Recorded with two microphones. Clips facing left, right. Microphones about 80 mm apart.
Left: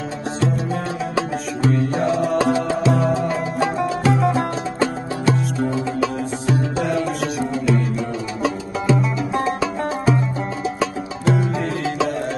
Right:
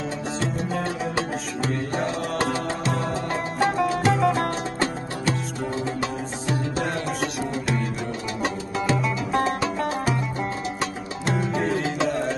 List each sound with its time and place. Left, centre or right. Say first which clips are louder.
4.2 s music: left 2 dB; left
8.9 s music: left 2 dB; left